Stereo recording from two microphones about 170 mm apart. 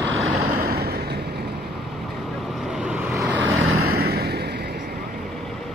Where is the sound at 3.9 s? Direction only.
65° right (ahead or behind).